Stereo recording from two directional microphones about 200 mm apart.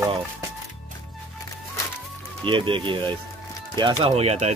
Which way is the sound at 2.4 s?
25° right (ahead or behind).